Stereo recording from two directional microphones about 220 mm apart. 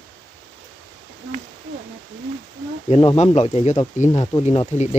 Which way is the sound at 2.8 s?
25° left (ahead or behind).